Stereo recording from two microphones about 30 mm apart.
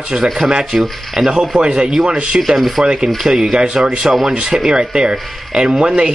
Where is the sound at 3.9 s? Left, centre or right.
Right.